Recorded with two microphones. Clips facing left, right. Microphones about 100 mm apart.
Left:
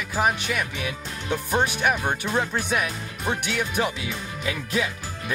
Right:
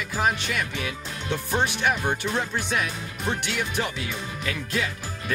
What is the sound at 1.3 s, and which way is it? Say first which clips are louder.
Speech: left 2 dB; 15° left (ahead or behind).